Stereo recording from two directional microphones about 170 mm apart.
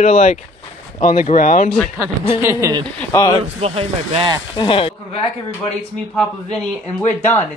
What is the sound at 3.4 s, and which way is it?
Speech, 35° right (ahead or behind).